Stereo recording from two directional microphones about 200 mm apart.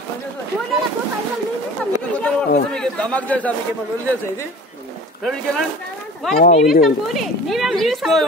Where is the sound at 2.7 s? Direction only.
5° left (ahead or behind).